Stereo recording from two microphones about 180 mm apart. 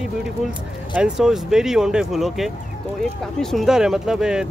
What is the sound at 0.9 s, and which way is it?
Speech, 5° right (ahead or behind).